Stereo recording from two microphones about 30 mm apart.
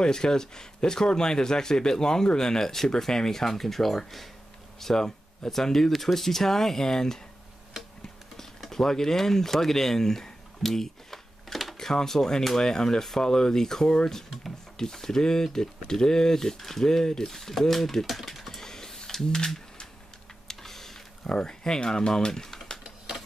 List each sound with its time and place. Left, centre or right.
0.0 s speech: left; by 4.3 s centre
4.7 s speech: centre
8.6 s speech: centre
10.6 s a sound: centre
11.7 s speech: centre
17.3 s speech: centre
18.6 s a sound: centre
19.2 s speech: left
20.4 s computer keyboard: centre
21.2 s speech: left